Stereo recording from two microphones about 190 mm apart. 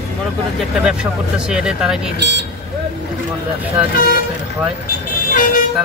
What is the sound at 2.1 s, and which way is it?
Speech, 65° right (ahead or behind).